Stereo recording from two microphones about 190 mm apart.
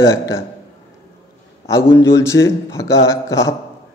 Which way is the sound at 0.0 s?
20° left (ahead or behind).